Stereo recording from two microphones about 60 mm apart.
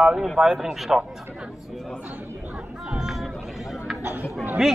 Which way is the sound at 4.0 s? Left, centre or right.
Right.